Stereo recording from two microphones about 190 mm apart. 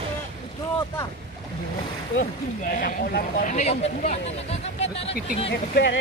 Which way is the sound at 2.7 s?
55° left (ahead or behind).